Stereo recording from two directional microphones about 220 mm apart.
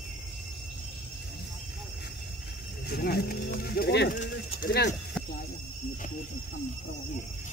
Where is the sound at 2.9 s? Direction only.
45° left (ahead or behind).